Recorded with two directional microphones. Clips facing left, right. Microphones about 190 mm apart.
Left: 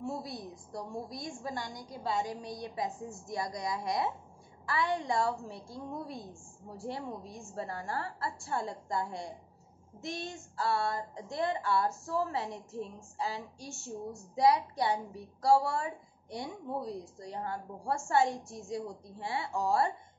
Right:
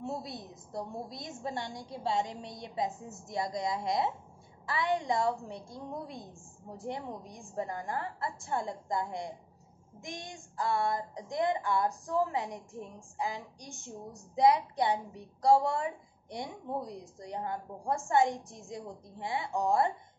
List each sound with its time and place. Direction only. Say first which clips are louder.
0.0 s a woman's voice: even; 20° right (ahead or behind)
9.9 s female singing: left 4 dB; 15° right (ahead or behind)